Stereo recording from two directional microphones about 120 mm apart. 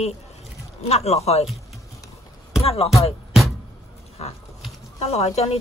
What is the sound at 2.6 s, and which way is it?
Speech, 55° left (ahead or behind).